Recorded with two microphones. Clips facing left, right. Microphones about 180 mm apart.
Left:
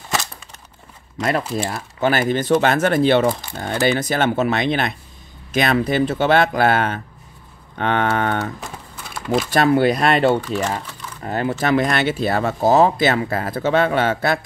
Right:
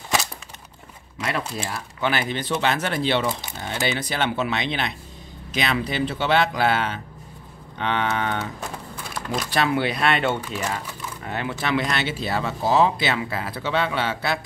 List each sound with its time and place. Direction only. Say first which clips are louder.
1.7 s speech: left 5 dB; 45° left (ahead or behind)
9.1 s a sound: left 8 dB; centre (ahead or behind)
9.5 s speech: left 7 dB; 45° left (ahead or behind)